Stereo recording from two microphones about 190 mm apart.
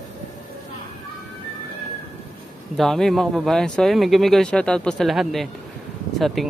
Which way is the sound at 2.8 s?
Centre (ahead or behind).